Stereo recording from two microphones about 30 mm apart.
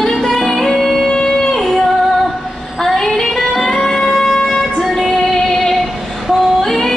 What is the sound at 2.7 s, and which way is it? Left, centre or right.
Child singing, centre.